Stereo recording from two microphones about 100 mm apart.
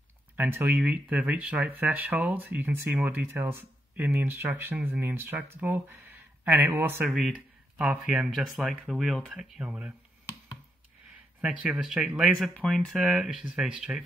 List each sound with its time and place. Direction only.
0.4 s speech: 20° right (ahead or behind)
7.1 s speech: centre (ahead or behind)
7.3 s speech: 15° right (ahead or behind)
8.5 s speech: centre (ahead or behind)
9.6 s speech: 10° right (ahead or behind)
11.4 s speech: 10° right (ahead or behind)